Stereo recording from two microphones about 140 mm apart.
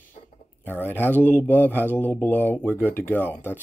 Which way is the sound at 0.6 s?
15° left (ahead or behind).